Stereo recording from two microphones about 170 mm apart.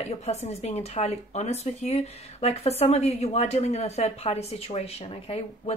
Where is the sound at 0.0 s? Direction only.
40° left (ahead or behind).